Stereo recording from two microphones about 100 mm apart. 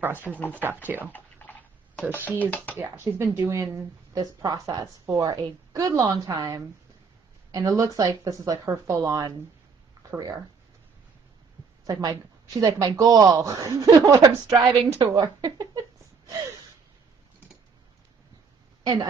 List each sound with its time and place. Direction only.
0.2 s speech: 20° left (ahead or behind)
0.8 s speech: 20° right (ahead or behind)
1.1 s a sound: 15° left (ahead or behind)
2.7 s speech: 20° right (ahead or behind)
3.6 s a woman's voice: 40° right (ahead or behind)
11.8 s a woman's voice: 40° right (ahead or behind)